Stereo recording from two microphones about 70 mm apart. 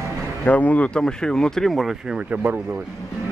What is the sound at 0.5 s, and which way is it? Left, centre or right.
Speech, left.